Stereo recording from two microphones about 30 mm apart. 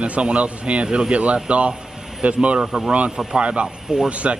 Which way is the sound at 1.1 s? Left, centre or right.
Right.